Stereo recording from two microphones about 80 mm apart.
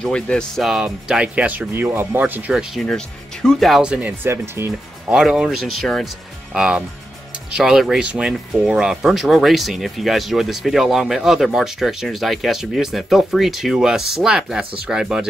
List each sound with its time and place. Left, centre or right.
0.0 s speech: centre
0.6 s speech: centre; by 2.5 s right
2.5 s speech: centre
3.8 s speech: centre
4.2 s speech: right
5.1 s speech: centre